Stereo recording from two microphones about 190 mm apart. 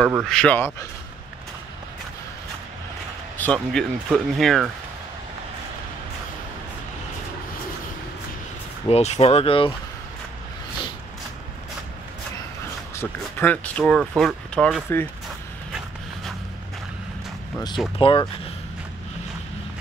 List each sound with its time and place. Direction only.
0.0 s speech: 5° right (ahead or behind)
3.3 s speech: 5° left (ahead or behind)
8.8 s speech: 35° left (ahead or behind)
12.9 s speech: 10° left (ahead or behind)
17.9 s speech: 25° left (ahead or behind)